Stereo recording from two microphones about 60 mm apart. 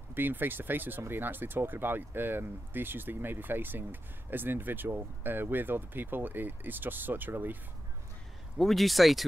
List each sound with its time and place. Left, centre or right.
0.1 s speech: right
8.5 s speech: centre